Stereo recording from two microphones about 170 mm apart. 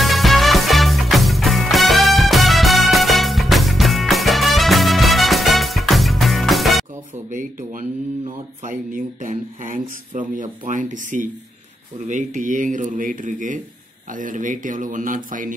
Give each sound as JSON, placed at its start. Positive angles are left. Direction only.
{"t": 0.0, "sound": "music", "side_deg": 0}
{"t": 7.2, "sound": "a sound", "side_deg": -50}
{"t": 12.1, "sound": "speech", "side_deg": -50}